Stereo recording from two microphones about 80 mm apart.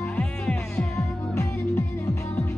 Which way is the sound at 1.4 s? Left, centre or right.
Left.